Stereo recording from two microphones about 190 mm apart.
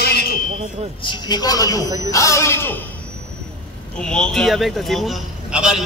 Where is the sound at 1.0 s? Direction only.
20° left (ahead or behind).